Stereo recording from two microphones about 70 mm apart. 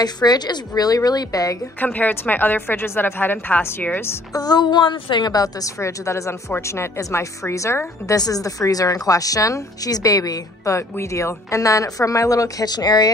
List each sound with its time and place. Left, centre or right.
0.0 s a woman's voice: left
1.8 s a woman's voice: left
4.3 s a woman's voice: left
8.2 s a woman's voice: left